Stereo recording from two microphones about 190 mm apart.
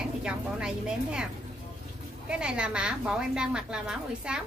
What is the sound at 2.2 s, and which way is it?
A woman's voice, 5° right (ahead or behind).